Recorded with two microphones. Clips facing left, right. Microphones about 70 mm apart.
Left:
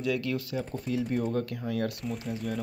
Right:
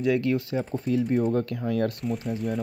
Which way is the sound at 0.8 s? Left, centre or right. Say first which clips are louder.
Right 6 dB; right.